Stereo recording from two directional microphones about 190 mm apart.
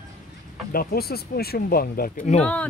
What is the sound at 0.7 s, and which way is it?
Speech, 50° left (ahead or behind).